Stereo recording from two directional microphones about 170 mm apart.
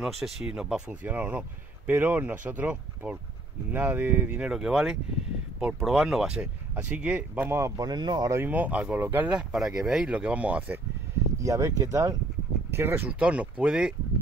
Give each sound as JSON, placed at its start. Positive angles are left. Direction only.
{"t": 0.0, "sound": "speech", "side_deg": 0}
{"t": 11.4, "sound": "speech", "side_deg": -20}